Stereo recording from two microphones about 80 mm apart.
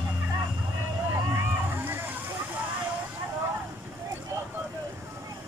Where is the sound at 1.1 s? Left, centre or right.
Right.